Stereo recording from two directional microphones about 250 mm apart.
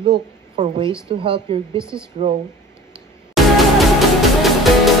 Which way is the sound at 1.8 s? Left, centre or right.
Centre.